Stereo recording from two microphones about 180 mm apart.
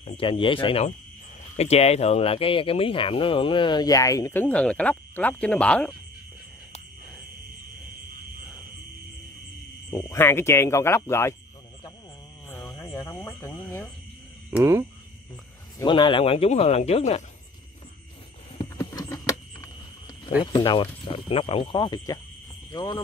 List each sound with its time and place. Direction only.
0.0 s speech: 30° left (ahead or behind); by 5.9 s 5° left (ahead or behind)
9.8 s speech: 20° left (ahead or behind)
12.7 s a sound: 15° left (ahead or behind)
14.5 s speech: 15° right (ahead or behind)
15.8 s speech: 25° left (ahead or behind)
18.6 s a sound: 20° left (ahead or behind)
20.5 s speech: 25° left (ahead or behind)